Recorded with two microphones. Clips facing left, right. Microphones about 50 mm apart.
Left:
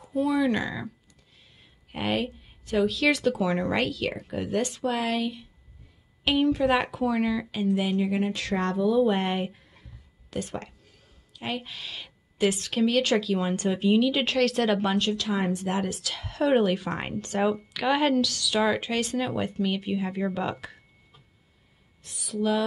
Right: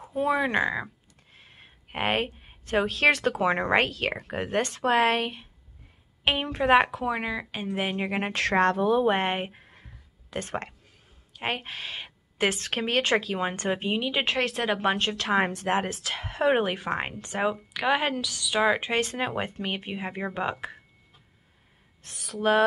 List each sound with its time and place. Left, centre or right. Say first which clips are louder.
0.0 s a woman's voice: left 1 dB; right
1.3 s speech: right 6 dB; right
6.2 s a woman's voice: left 2 dB; right
14.9 s a woman's voice: right 1 dB; right
22.0 s speech: right 1 dB; right